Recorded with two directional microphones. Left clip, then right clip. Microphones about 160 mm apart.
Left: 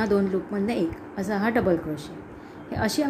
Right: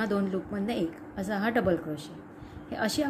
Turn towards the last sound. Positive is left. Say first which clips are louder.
# left 4 dB
turn(degrees=-20)  # may be behind; listen again after turning